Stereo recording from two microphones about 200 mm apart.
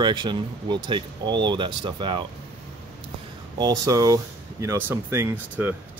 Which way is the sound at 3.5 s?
20° right (ahead or behind).